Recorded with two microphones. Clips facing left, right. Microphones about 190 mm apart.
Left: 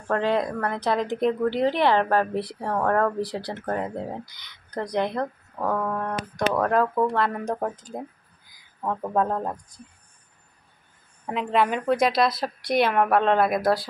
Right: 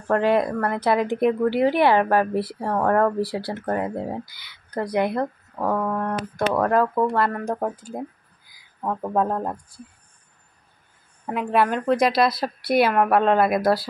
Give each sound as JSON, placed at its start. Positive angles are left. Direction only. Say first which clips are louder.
{"t": 0.1, "sound": "speech", "louder": "right 4 dB", "side_deg": -10}
{"t": 11.2, "sound": "speech", "louder": "right 2 dB", "side_deg": -5}